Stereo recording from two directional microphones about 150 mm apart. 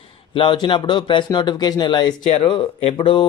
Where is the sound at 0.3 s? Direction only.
35° left (ahead or behind).